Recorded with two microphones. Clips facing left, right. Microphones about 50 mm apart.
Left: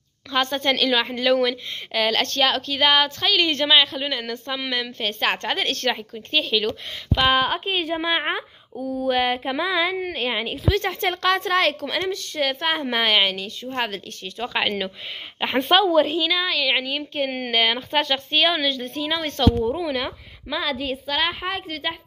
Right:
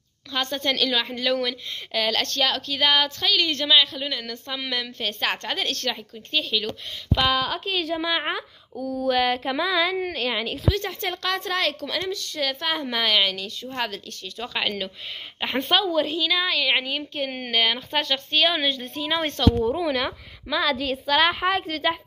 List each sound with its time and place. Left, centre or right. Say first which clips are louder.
0.3 s a woman's voice: left 4 dB; left
4.5 s a woman's voice: left 2 dB; centre
5.9 s a woman's voice: left 5 dB; left
7.2 s a woman's voice: left 6 dB; left; by 10.6 s centre
10.7 s a woman's voice: left 7 dB; left; by 15.8 s centre
15.8 s a woman's voice: left 5 dB; left
16.3 s a woman's voice: left 1 dB; centre
17.1 s speech: left 4 dB; centre
18.8 s a woman's voice: even; centre